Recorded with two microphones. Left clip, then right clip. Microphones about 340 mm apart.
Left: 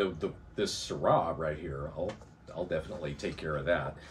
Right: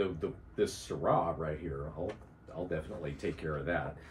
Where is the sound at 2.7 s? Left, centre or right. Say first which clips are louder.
Left 4 dB; left.